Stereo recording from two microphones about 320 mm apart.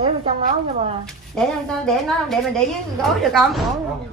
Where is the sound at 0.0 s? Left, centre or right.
Centre.